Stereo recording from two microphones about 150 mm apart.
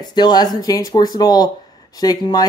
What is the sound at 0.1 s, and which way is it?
Speech, 30° left (ahead or behind).